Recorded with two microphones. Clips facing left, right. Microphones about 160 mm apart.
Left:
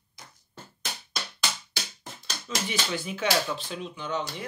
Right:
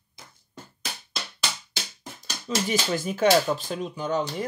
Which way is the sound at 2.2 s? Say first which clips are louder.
Right 5 dB; 40° right (ahead or behind).